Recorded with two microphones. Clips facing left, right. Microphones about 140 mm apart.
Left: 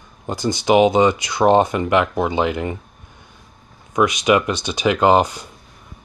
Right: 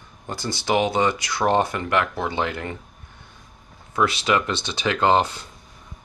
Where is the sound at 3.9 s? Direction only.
15° left (ahead or behind).